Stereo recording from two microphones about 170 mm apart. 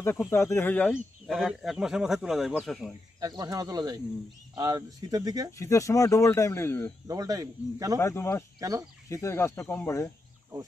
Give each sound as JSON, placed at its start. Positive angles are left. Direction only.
{"t": 0.0, "sound": "speech", "side_deg": 15}
{"t": 3.2, "sound": "speech", "side_deg": -20}
{"t": 5.6, "sound": "speech", "side_deg": 20}
{"t": 7.1, "sound": "speech", "side_deg": -20}
{"t": 8.0, "sound": "speech", "side_deg": 15}
{"t": 8.5, "sound": "speech", "side_deg": -20}
{"t": 9.1, "sound": "speech", "side_deg": 15}